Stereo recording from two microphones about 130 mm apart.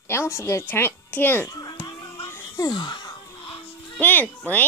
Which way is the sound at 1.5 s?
30° left (ahead or behind).